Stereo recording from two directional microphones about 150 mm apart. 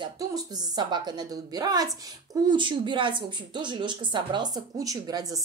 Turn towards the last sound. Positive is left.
turn(degrees=-25)  # may be behind; listen again after turning